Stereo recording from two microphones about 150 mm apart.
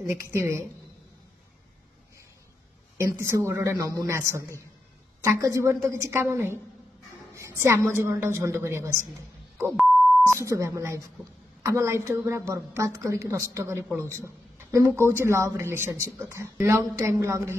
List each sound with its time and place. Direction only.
0.0 s speech: 20° right (ahead or behind)
3.0 s a woman's voice: 20° right (ahead or behind)
10.2 s a woman's voice: 20° right (ahead or behind)